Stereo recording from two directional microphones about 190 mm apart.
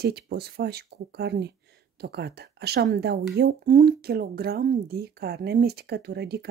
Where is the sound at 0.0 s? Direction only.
60° right (ahead or behind).